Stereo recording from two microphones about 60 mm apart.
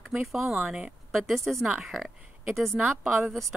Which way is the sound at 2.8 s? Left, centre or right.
Right.